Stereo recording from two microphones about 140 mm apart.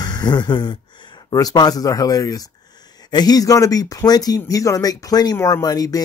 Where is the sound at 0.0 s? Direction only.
30° left (ahead or behind).